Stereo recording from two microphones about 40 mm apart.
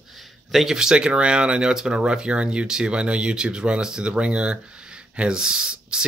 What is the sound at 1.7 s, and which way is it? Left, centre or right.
Speech, centre.